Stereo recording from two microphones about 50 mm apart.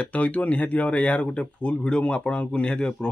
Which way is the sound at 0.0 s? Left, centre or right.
Left.